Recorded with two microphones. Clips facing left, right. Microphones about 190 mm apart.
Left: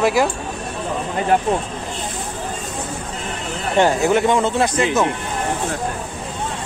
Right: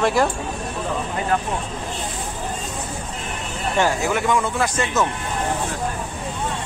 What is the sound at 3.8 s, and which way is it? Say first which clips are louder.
Speech: left 5 dB; 25° left (ahead or behind).